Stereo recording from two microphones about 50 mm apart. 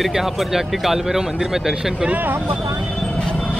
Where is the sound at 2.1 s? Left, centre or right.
Right.